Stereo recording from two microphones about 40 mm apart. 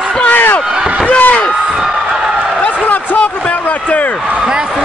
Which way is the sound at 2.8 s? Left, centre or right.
Left.